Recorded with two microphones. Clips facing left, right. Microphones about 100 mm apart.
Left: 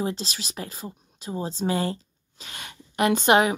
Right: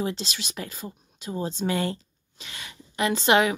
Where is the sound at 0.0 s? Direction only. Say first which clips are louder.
Left 1 dB; 35° left (ahead or behind); by 3.3 s 50° left (ahead or behind).